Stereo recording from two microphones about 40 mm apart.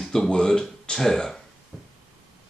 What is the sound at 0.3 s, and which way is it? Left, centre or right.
Speech, centre.